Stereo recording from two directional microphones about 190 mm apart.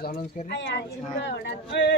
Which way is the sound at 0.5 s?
65° left (ahead or behind).